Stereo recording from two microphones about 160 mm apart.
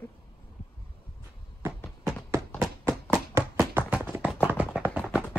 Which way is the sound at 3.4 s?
20° right (ahead or behind).